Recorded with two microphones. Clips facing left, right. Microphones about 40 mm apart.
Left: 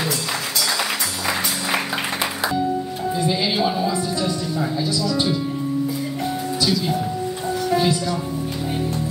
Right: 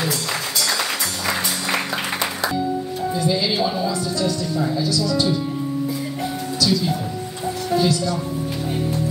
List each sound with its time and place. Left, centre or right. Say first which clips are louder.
3.2 s speech: even; left
7.7 s music: right 1 dB; left